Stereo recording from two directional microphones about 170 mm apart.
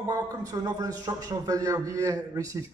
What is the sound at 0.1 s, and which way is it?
A man's voice, 20° right (ahead or behind).